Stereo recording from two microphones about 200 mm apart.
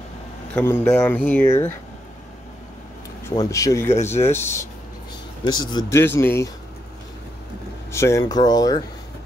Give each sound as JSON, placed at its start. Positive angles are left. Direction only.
{"t": 0.6, "sound": "speech", "side_deg": 10}
{"t": 3.3, "sound": "speech", "side_deg": 15}
{"t": 5.7, "sound": "speech", "side_deg": 15}
{"t": 7.9, "sound": "speech", "side_deg": 15}